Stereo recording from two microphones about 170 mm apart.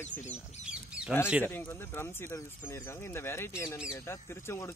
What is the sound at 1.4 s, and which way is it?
Speech, 15° left (ahead or behind).